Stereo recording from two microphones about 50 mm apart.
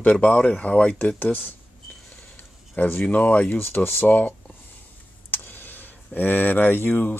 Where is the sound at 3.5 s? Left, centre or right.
Left.